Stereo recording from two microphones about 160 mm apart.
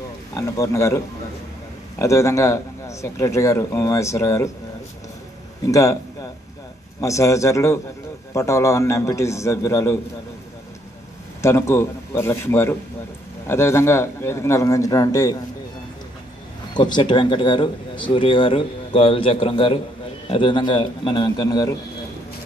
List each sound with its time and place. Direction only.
0.4 s a man's voice: 20° left (ahead or behind)
5.7 s a man's voice: 20° left (ahead or behind)
7.0 s a man's voice: 20° left (ahead or behind)
11.4 s a man's voice: 15° left (ahead or behind)
16.7 s a man's voice: 25° left (ahead or behind)